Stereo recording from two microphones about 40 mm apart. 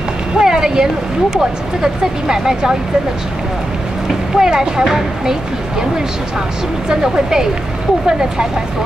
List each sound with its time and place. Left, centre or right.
0.4 s a sound: centre
1.3 s speech: centre
4.4 s speech: centre
6.9 s speech: centre